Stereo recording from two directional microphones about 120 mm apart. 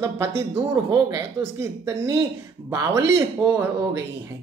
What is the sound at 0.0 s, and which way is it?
Speech, 25° right (ahead or behind).